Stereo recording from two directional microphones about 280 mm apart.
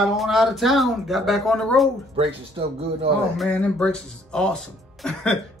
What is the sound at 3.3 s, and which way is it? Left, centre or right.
Speech, centre.